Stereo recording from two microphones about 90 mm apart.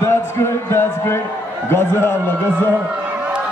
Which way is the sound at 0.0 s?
30° left (ahead or behind).